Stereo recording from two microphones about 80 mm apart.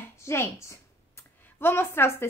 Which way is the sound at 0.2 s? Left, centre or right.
Left.